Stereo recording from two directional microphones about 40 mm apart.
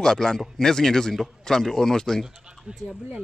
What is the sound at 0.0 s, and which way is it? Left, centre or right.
Speech, centre.